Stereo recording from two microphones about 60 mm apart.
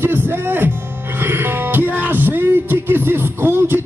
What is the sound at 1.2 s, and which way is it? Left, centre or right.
Music, right.